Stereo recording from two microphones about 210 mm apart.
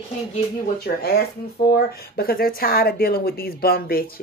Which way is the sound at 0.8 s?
50° left (ahead or behind).